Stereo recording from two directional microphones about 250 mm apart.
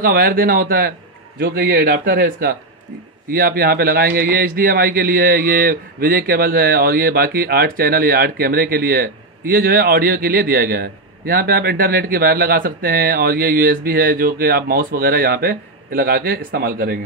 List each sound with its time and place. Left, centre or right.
0.0 s a man's voice: right